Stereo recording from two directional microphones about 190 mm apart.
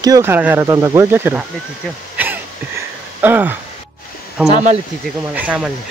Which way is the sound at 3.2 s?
10° right (ahead or behind).